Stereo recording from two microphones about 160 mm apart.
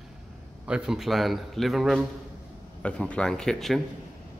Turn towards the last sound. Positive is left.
turn(degrees=0)  # may be behind; listen again after turning